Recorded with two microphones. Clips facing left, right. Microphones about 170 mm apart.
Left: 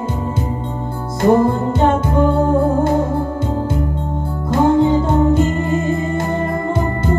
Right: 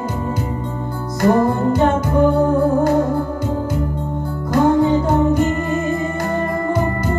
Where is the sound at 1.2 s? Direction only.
15° left (ahead or behind).